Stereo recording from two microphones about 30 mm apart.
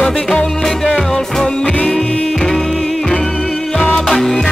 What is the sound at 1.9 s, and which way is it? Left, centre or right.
Music, left.